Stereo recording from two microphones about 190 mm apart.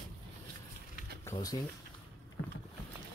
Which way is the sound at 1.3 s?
20° left (ahead or behind).